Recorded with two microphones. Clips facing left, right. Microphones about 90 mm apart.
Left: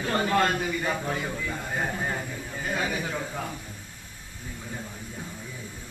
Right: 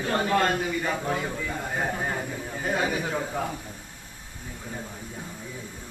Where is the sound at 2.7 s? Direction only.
25° right (ahead or behind).